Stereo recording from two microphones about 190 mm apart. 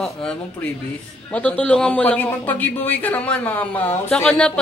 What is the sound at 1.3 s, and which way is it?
A man's voice, 5° left (ahead or behind).